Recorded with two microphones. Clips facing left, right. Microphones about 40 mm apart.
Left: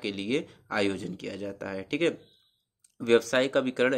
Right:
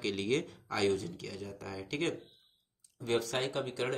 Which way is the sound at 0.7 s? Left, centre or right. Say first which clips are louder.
Left 3 dB; left.